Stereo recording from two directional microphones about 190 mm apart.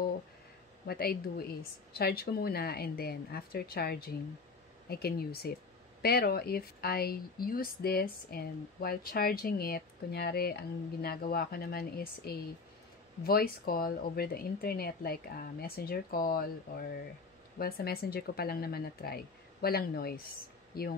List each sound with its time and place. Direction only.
0.8 s speech: 55° left (ahead or behind)